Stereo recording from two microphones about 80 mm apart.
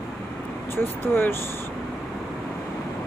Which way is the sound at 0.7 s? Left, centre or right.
Left.